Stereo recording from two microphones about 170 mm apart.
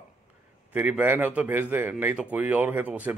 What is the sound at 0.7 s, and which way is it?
A man's voice, 10° right (ahead or behind).